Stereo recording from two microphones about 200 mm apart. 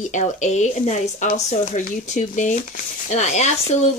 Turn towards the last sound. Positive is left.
turn(degrees=35)  # may be behind; listen again after turning